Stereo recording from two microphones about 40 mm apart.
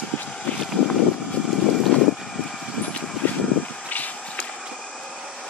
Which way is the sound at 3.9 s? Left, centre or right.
Left.